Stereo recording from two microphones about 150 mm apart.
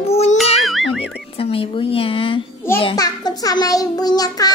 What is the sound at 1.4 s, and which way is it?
A child's voice, 40° left (ahead or behind).